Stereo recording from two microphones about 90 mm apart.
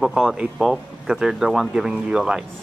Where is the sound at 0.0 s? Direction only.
5° right (ahead or behind).